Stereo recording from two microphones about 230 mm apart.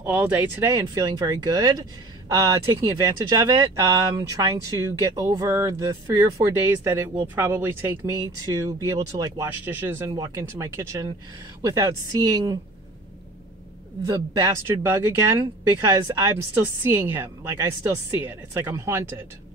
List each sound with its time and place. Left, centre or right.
0.0 s speech: centre
14.0 s speech: centre